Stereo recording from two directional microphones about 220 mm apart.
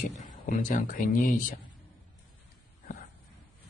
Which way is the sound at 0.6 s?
35° left (ahead or behind).